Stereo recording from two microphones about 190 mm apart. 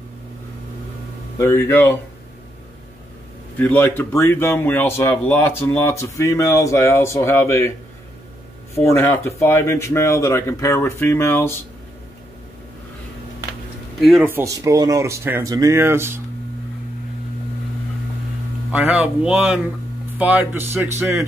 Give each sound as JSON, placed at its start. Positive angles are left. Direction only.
{"t": 1.4, "sound": "speech", "side_deg": 10}
{"t": 3.5, "sound": "speech", "side_deg": 10}
{"t": 8.8, "sound": "speech", "side_deg": 10}
{"t": 13.9, "sound": "speech", "side_deg": 0}
{"t": 14.2, "sound": "speech", "side_deg": -15}
{"t": 18.7, "sound": "speech", "side_deg": -10}